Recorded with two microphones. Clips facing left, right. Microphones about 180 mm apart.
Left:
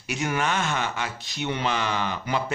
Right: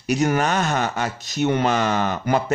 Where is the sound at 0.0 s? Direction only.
40° right (ahead or behind).